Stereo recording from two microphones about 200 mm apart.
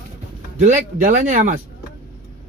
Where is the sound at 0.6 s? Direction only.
40° right (ahead or behind).